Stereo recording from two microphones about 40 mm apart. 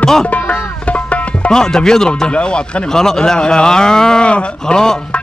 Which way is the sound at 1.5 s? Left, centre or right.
Centre.